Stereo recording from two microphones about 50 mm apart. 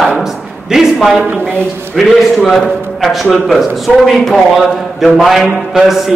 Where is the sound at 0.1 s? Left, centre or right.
Centre.